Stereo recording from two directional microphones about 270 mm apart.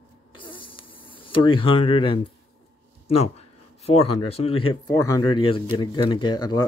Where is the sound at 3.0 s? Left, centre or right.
Left.